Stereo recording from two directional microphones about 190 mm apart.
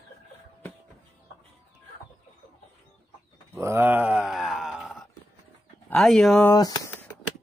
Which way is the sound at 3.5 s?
15° right (ahead or behind).